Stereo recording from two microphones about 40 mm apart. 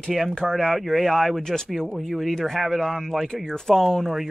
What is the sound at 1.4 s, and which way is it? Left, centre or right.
Speech, centre.